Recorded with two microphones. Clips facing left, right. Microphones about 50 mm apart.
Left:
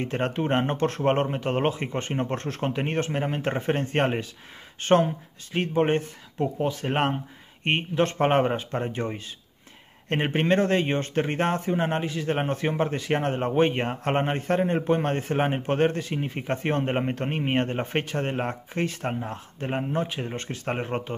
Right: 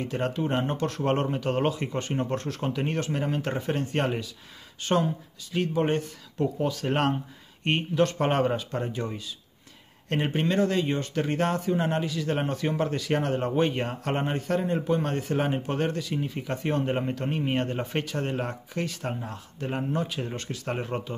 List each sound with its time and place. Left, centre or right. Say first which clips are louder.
0.0 s a man's voice: left 2 dB; left